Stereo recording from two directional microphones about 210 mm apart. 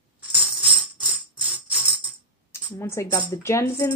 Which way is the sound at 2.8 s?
15° left (ahead or behind).